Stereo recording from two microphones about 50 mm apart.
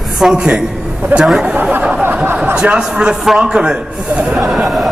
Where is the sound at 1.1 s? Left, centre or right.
Right.